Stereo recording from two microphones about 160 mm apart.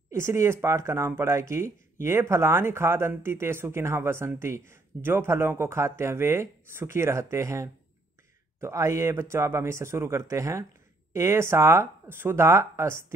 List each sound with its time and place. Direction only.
0.1 s speech: 15° right (ahead or behind)